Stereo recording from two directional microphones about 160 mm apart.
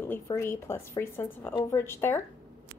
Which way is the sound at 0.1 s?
15° left (ahead or behind).